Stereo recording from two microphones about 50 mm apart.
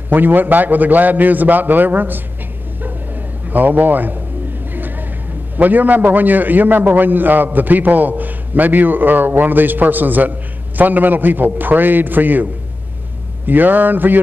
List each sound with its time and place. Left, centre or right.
0.1 s a man's voice: right
3.4 s a man's voice: right
5.6 s a man's voice: right
13.5 s a man's voice: right